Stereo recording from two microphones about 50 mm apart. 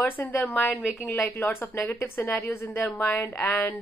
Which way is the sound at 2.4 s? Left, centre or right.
Left.